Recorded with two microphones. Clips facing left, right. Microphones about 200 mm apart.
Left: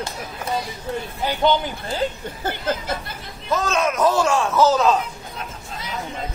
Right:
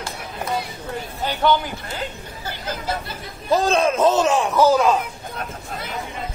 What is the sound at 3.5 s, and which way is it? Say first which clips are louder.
Speech: right 4 dB; 35° right (ahead or behind).